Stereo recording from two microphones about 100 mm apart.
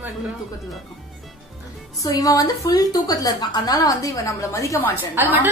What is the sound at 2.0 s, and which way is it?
A woman's voice, 35° left (ahead or behind).